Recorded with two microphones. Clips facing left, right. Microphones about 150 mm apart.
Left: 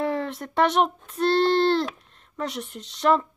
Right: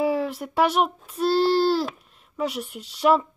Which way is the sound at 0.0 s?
5° right (ahead or behind).